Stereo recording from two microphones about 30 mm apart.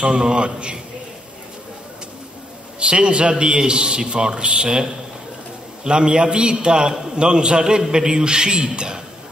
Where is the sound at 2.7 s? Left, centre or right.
Right.